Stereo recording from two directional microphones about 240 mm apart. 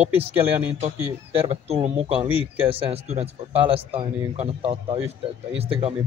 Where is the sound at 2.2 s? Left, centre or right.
Centre.